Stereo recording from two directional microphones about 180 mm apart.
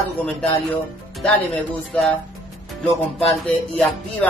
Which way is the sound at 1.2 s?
5° left (ahead or behind).